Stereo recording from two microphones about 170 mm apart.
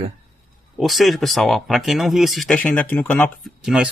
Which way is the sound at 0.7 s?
Centre (ahead or behind).